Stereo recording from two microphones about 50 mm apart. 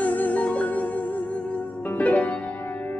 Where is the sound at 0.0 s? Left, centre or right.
Left.